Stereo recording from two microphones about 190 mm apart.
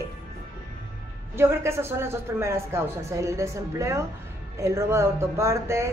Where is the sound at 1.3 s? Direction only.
15° right (ahead or behind).